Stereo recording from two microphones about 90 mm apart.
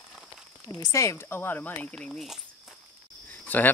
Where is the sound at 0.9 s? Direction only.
35° left (ahead or behind).